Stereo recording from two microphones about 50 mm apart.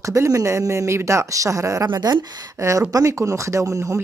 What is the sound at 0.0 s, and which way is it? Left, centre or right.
Speech, right.